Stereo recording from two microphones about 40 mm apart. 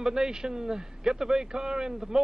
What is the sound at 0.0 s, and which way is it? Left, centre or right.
A man's voice, centre.